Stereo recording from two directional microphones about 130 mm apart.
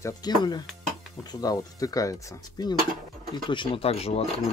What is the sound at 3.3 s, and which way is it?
Speech, 40° left (ahead or behind).